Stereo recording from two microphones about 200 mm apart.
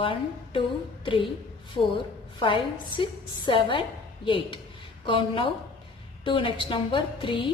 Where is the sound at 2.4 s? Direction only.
25° left (ahead or behind).